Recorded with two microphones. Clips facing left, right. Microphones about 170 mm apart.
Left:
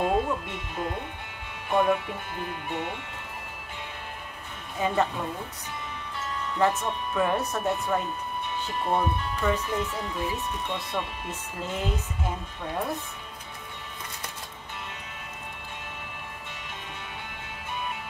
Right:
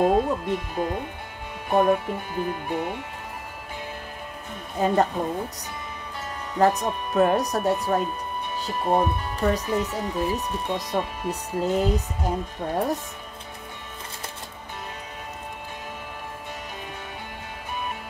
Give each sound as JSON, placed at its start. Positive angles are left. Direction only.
{"t": 0.0, "sound": "speech", "side_deg": -40}
{"t": 4.7, "sound": "speech", "side_deg": -40}
{"t": 6.6, "sound": "speech", "side_deg": -40}